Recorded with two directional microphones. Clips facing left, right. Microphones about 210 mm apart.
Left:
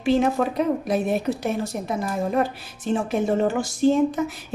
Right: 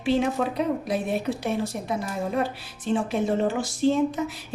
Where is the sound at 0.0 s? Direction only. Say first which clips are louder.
Left 3 dB; 45° left (ahead or behind).